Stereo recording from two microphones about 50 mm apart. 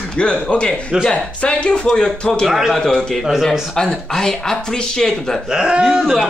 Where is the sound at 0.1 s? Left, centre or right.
Centre.